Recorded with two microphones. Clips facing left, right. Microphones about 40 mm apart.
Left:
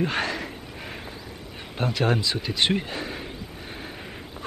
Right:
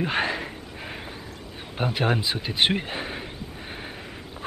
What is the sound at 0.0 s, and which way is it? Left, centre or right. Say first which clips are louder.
Speech: right 1 dB; centre.